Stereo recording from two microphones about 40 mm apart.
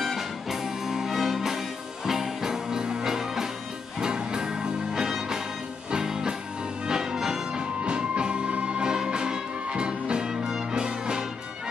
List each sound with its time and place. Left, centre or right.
0.0 s music: centre
7.5 s music: right
8.9 s music: centre